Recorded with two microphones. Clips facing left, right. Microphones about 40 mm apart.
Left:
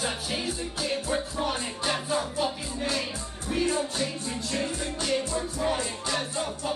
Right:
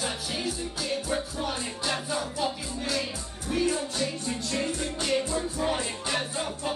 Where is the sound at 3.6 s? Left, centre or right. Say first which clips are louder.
Left 1 dB; left.